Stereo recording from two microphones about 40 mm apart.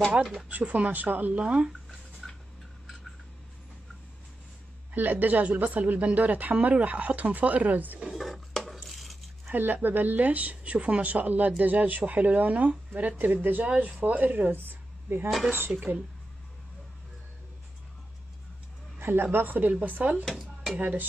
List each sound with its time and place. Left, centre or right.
0.2 s speech: centre
0.5 s speech: right
1.4 s speech: right
1.7 s dishes: centre
4.9 s speech: right
8.1 s dishes: centre
9.5 s speech: right
13.7 s speech: right
14.0 s speech: right
18.9 s speech: right
19.4 s speech: right